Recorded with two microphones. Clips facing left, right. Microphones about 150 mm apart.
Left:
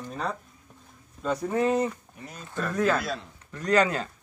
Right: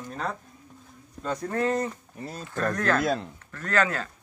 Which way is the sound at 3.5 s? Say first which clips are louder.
Left 3 dB; 15° left (ahead or behind).